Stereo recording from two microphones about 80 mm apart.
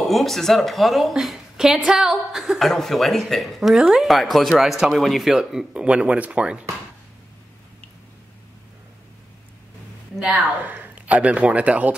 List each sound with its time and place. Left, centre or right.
0.1 s a woman's voice: centre
10.1 s a woman's voice: centre
10.4 s a man's voice: right